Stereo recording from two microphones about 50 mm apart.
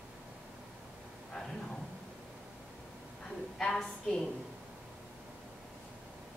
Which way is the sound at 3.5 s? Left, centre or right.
Centre.